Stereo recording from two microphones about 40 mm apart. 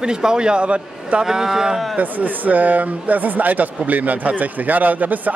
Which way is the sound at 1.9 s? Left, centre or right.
Right.